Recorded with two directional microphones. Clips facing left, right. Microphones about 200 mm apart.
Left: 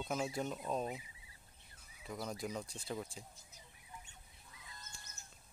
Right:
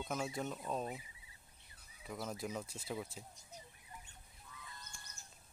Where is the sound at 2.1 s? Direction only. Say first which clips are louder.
Even; 5° right (ahead or behind).